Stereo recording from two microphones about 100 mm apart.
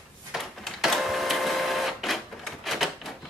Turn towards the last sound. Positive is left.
turn(degrees=0)  # may be behind; listen again after turning